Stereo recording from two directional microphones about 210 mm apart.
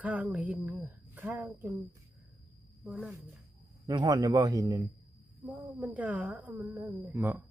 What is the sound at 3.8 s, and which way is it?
A woman's voice, 20° right (ahead or behind).